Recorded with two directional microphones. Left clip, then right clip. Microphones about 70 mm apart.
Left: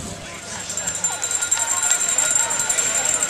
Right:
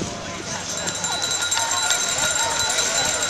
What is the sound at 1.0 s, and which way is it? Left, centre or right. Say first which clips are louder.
Run: right 3 dB; centre.